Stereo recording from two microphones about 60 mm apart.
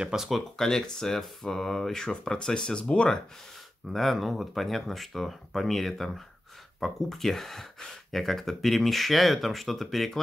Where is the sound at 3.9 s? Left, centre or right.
Centre.